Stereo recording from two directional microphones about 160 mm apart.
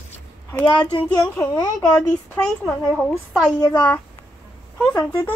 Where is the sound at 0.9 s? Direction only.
30° left (ahead or behind).